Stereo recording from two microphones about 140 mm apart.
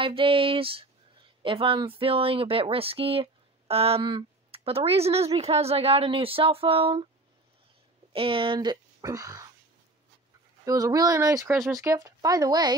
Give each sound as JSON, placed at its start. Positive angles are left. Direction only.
{"t": 0.0, "sound": "speech", "side_deg": -40}
{"t": 8.1, "sound": "speech", "side_deg": -40}
{"t": 10.6, "sound": "speech", "side_deg": -25}
{"t": 11.4, "sound": "speech", "side_deg": 0}
{"t": 11.7, "sound": "speech", "side_deg": -25}